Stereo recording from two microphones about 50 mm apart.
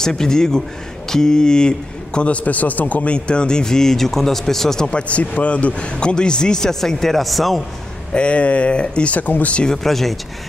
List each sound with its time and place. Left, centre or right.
0.0 s a man's voice: centre
5.0 s a man's voice: left; by 7.6 s centre
8.1 s speech: left
9.7 s speech: centre